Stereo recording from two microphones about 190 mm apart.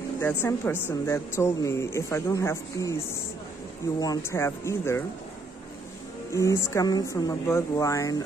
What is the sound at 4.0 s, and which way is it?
Speech, 15° left (ahead or behind).